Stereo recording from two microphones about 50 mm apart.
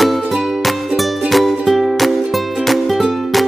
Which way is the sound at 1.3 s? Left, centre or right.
Centre.